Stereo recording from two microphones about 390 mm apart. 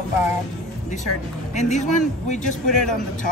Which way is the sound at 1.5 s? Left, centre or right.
Centre.